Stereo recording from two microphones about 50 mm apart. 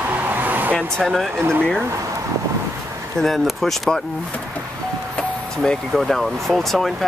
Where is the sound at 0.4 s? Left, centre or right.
Right.